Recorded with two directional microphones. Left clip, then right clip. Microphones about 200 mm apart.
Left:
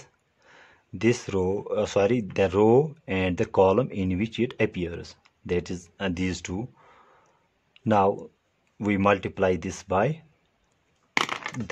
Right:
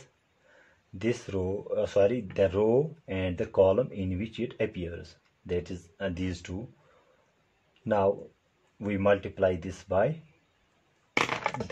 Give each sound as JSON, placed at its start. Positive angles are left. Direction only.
{"t": 0.9, "sound": "speech", "side_deg": 35}
{"t": 7.8, "sound": "speech", "side_deg": 35}